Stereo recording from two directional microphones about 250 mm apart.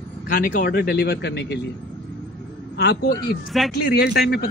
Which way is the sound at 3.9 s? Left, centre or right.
Left.